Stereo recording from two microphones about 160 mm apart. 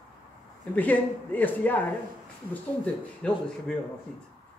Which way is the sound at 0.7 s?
10° left (ahead or behind).